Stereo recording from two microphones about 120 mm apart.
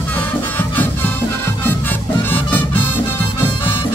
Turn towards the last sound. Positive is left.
turn(degrees=15)  # may be behind; listen again after turning